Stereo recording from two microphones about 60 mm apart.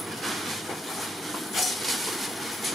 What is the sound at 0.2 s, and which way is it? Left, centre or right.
Train, centre.